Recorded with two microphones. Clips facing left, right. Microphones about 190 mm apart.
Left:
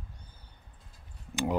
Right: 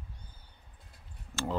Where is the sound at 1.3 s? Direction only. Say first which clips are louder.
Left 4 dB; 15° left (ahead or behind).